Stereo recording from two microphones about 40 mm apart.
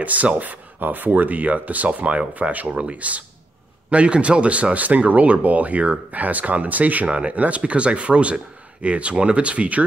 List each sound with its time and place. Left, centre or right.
0.0 s speech: right
2.7 s speech: right
7.1 s speech: right